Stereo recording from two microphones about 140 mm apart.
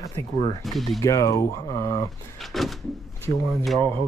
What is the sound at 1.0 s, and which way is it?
Speech, 25° left (ahead or behind).